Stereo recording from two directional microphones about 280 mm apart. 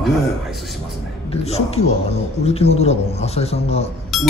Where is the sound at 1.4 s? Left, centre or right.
Left.